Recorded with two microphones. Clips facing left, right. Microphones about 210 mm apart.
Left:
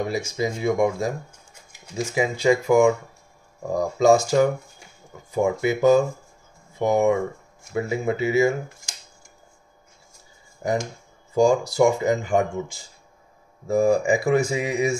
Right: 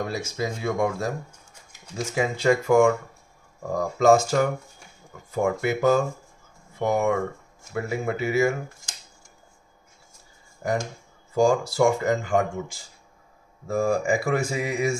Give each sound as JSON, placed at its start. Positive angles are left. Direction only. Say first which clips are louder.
{"t": 0.0, "sound": "speech", "louder": "left 3 dB", "side_deg": 15}
{"t": 10.6, "sound": "speech", "louder": "left 2 dB", "side_deg": 20}
{"t": 13.7, "sound": "speech", "louder": "left 4 dB", "side_deg": 20}